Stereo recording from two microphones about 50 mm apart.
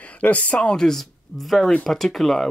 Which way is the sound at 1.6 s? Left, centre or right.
Centre.